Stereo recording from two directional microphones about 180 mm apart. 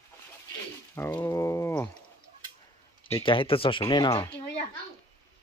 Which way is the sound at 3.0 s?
30° left (ahead or behind).